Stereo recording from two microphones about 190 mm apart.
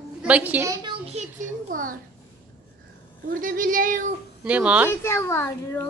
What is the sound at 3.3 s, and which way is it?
Speech, 45° right (ahead or behind).